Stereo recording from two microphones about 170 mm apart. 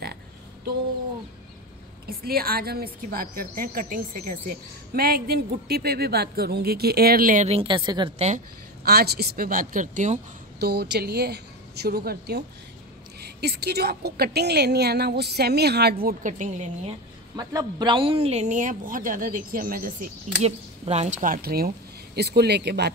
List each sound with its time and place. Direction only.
2.0 s speech: 60° right (ahead or behind)
7.4 s a woman's voice: 30° right (ahead or behind)
8.8 s speech: 70° right (ahead or behind); by 10.2 s 45° right (ahead or behind)
10.6 s a woman's voice: 75° right (ahead or behind); by 16.7 s 45° right (ahead or behind)
17.4 s speech: 20° right (ahead or behind); by 20.1 s 55° right (ahead or behind)
20.4 s speech: 40° right (ahead or behind); by 22.8 s 75° right (ahead or behind)